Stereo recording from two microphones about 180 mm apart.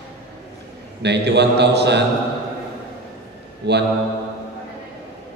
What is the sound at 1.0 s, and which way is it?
A man's voice, 70° right (ahead or behind).